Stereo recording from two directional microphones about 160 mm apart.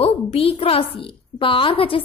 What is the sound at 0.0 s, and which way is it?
A woman's voice, 40° left (ahead or behind).